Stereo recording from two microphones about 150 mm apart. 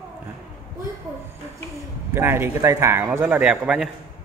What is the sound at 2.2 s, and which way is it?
A man's voice, 15° right (ahead or behind).